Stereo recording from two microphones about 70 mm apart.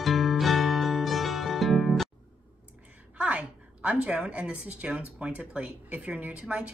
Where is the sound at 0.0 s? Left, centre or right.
Centre.